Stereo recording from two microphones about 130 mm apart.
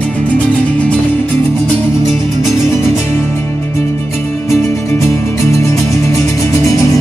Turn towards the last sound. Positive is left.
turn(degrees=25)  # may be behind; listen again after turning